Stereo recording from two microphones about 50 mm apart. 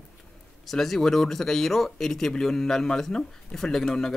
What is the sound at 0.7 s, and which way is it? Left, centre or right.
Speech, centre.